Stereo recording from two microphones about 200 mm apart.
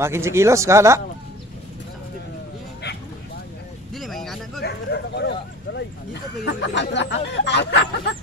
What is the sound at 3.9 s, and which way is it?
Vehicle, centre (ahead or behind).